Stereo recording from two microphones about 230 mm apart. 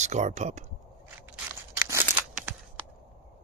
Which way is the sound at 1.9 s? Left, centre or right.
Centre.